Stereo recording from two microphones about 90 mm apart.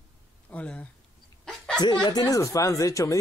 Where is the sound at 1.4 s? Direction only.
10° left (ahead or behind).